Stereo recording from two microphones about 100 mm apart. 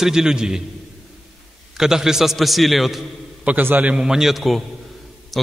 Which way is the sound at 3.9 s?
5° right (ahead or behind).